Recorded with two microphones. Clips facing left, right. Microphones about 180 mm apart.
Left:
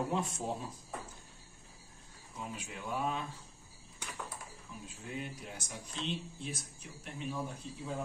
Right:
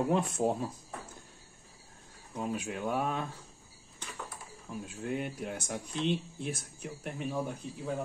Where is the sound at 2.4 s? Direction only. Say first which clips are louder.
Right 9 dB; 55° right (ahead or behind).